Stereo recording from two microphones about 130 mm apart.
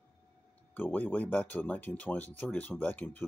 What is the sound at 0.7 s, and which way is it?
Speech, 15° left (ahead or behind).